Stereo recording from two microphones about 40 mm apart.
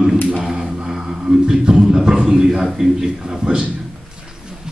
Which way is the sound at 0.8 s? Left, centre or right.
Centre.